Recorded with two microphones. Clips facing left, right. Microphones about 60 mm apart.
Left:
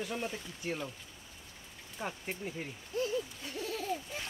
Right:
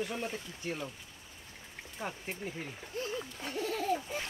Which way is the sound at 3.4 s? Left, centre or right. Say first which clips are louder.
Right 4 dB; right.